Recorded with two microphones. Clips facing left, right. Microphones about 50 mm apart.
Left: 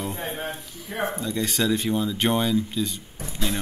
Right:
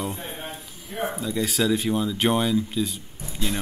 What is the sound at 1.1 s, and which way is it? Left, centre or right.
Speech, centre.